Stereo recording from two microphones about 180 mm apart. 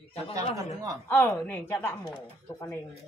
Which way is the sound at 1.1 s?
10° left (ahead or behind).